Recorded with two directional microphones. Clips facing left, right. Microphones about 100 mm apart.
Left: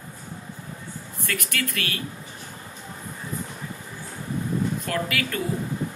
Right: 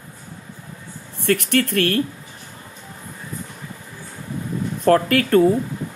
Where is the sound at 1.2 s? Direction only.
60° right (ahead or behind).